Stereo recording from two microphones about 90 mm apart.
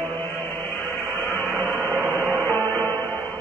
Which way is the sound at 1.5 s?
20° left (ahead or behind).